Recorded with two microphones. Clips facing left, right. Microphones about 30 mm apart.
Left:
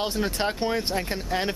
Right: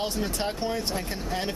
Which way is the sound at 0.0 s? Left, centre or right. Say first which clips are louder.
Left 3 dB; left.